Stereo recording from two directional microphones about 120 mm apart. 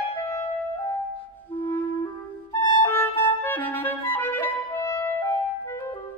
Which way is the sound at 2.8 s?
15° left (ahead or behind).